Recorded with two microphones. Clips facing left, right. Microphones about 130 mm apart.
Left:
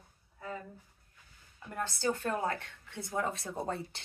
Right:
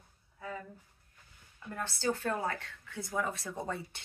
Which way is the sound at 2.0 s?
20° left (ahead or behind).